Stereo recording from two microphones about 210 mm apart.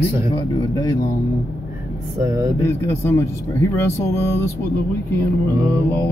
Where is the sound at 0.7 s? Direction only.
15° left (ahead or behind).